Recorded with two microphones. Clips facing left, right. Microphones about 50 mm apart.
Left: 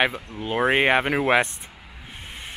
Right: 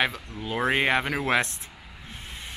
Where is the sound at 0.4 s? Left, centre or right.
Left.